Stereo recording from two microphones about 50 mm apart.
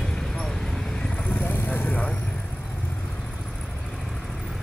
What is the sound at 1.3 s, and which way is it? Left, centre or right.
Vehicle, left.